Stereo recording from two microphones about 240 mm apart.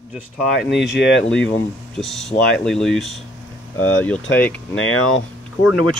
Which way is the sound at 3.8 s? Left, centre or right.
Left.